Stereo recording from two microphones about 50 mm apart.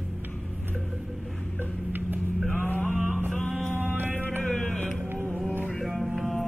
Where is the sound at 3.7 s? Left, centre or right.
Right.